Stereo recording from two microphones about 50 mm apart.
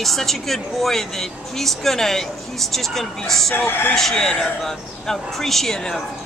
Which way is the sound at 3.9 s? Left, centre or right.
Centre.